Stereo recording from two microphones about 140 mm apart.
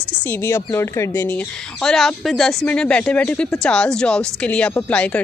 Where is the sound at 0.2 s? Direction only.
15° left (ahead or behind).